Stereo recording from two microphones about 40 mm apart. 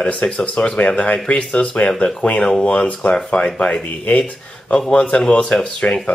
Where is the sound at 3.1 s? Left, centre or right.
Centre.